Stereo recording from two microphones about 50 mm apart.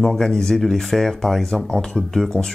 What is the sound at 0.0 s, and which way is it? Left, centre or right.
Speech, centre.